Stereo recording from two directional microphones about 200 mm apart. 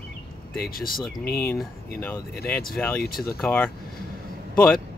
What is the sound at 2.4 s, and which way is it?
Speech, 50° left (ahead or behind).